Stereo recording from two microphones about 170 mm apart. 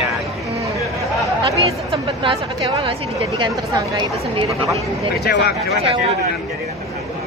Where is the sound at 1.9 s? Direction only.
30° right (ahead or behind).